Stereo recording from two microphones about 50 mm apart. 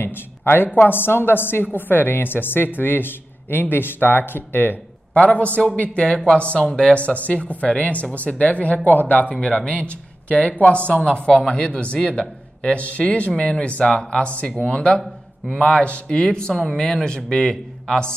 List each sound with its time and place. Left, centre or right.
0.5 s a woman's voice: left
5.1 s speech: left
13.3 s speech: centre